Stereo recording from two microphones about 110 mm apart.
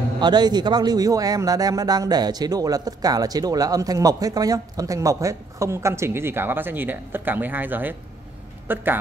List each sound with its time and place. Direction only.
0.2 s a man's voice: 40° right (ahead or behind); by 8.8 s 15° right (ahead or behind)